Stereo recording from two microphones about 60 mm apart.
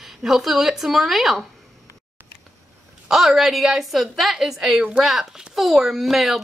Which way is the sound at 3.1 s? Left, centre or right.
Centre.